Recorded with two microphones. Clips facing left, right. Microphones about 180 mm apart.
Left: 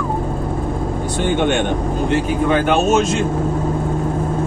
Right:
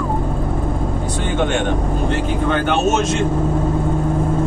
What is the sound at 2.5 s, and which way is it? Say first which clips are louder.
Speech: left 2 dB; 5° left (ahead or behind).